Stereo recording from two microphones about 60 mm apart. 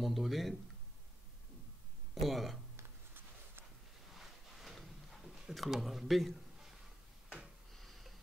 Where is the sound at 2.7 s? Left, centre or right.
Right.